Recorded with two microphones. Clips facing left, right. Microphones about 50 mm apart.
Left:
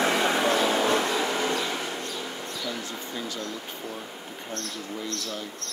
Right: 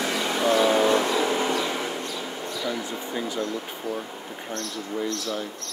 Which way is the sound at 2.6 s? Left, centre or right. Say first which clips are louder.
Right 6 dB; centre.